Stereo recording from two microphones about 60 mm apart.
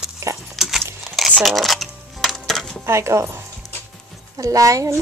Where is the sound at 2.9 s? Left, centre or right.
Right.